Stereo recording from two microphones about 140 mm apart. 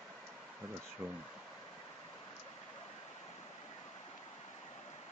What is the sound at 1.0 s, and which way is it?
Speech, 15° right (ahead or behind).